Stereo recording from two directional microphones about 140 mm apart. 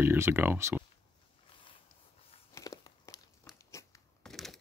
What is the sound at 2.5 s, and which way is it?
Crumpling, 25° left (ahead or behind).